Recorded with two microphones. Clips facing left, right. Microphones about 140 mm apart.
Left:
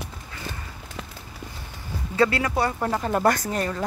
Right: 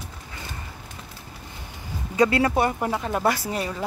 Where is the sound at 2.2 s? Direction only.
25° right (ahead or behind).